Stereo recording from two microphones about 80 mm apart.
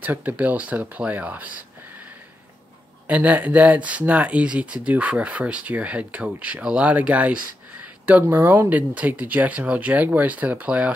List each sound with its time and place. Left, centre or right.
0.0 s speech: right
3.1 s speech: centre